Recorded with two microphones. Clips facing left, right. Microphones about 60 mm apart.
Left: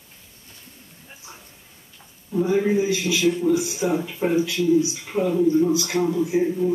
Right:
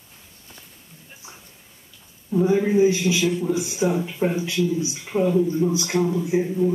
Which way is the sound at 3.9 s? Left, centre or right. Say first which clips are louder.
Left 1 dB; left.